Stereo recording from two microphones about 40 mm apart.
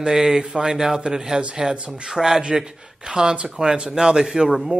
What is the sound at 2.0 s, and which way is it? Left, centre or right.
Speech, centre.